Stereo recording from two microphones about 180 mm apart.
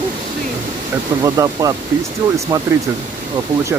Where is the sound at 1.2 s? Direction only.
20° right (ahead or behind).